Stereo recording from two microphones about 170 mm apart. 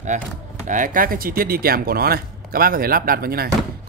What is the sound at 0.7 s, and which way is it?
Speech, 50° right (ahead or behind).